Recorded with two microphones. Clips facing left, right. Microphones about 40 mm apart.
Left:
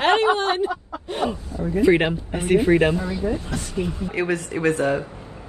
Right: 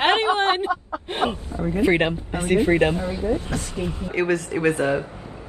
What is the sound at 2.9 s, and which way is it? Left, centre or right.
Speech, right.